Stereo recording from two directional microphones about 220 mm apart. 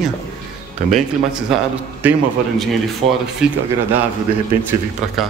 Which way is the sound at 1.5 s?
Centre (ahead or behind).